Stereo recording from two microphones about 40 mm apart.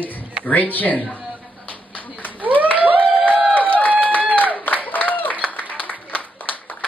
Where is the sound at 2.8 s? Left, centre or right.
Right.